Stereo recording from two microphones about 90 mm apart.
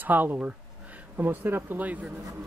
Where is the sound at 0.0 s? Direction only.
20° right (ahead or behind).